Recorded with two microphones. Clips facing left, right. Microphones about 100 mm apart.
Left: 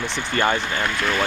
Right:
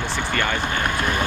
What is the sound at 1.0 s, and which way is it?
Speech, 15° right (ahead or behind).